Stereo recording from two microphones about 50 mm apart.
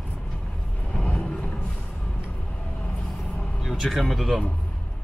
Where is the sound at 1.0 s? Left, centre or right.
Left.